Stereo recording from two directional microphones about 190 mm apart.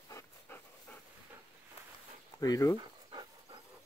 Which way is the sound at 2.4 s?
20° left (ahead or behind).